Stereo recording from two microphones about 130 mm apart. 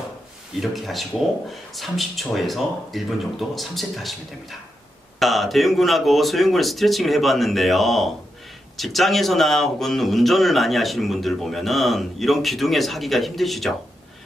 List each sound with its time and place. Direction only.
0.6 s a man's voice: centre (ahead or behind)